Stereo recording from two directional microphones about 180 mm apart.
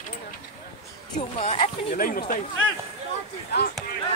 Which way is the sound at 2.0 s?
50° left (ahead or behind).